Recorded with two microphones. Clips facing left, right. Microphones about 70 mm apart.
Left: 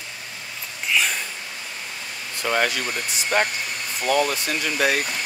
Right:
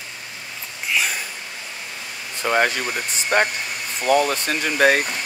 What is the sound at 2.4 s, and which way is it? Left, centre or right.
Speech, right.